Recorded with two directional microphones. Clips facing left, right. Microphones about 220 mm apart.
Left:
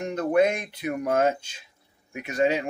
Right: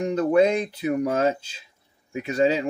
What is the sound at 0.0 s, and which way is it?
Speech, 30° right (ahead or behind).